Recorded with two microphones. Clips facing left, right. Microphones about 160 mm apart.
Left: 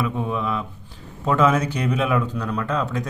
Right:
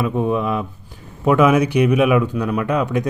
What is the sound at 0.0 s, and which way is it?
A man's voice, 15° right (ahead or behind).